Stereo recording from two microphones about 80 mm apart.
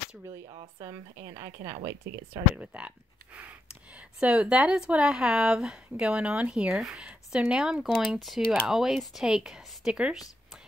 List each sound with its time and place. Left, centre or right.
0.7 s a woman's voice: right
2.5 s speech: centre
3.9 s speech: centre